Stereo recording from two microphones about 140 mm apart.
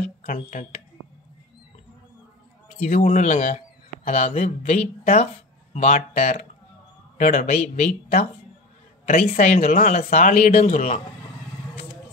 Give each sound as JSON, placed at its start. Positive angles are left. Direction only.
{"t": 0.2, "sound": "speech", "side_deg": 70}
{"t": 2.9, "sound": "a man's voice", "side_deg": 60}